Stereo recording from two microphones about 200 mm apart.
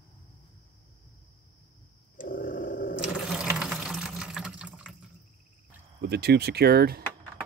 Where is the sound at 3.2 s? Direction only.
Centre (ahead or behind).